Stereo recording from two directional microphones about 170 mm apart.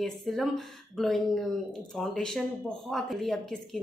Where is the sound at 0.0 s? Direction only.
Centre (ahead or behind).